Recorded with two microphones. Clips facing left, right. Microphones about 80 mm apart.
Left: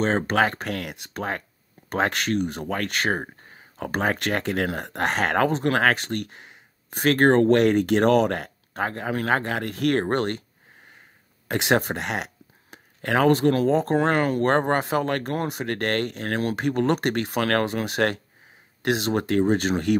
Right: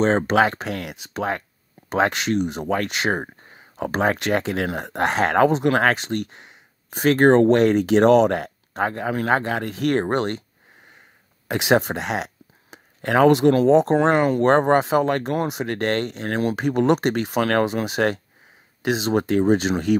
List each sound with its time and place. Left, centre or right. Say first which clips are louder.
0.4 s speech: right 3 dB; centre
3.4 s a sound: right 5 dB; centre
3.9 s speech: right 4 dB; centre
7.2 s speech: right 3 dB; right
7.5 s speech: right 2 dB; centre
11.4 s speech: right 3 dB; centre
12.7 s a sound: right 3 dB; centre
13.2 s speech: right 4 dB; centre
13.7 s speech: right 6 dB; right
14.0 s speech: right 4 dB; centre
14.8 s speech: right 5 dB; centre